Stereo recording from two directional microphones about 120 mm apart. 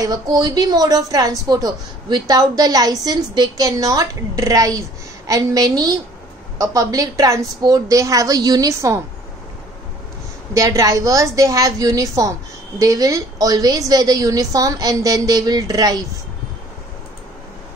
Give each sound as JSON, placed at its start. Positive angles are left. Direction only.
{"t": 0.0, "sound": "a woman's voice", "side_deg": -35}
{"t": 10.5, "sound": "a woman's voice", "side_deg": -25}